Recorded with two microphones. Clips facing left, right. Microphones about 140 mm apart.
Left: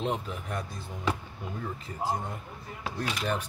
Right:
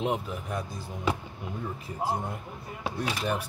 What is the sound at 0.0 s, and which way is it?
Speech, 10° right (ahead or behind).